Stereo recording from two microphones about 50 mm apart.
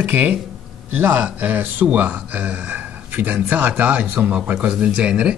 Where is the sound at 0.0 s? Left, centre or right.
Right.